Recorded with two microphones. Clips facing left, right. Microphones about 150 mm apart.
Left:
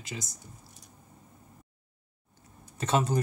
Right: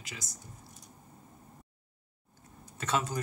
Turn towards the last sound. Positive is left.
turn(degrees=25)  # may be behind; listen again after turning